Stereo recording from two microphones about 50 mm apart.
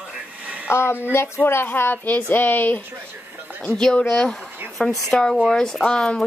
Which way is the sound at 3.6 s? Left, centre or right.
Centre.